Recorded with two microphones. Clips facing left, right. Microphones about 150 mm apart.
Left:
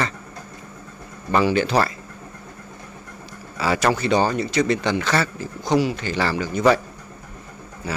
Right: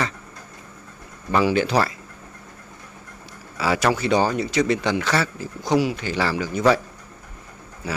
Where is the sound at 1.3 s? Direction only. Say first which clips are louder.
Left 1 dB; 10° right (ahead or behind).